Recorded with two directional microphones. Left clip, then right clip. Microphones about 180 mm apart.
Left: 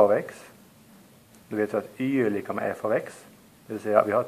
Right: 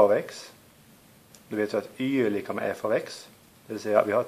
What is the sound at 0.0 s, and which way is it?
Speech, 35° right (ahead or behind).